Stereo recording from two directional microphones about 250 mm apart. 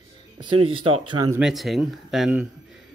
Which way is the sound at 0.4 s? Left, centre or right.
Centre.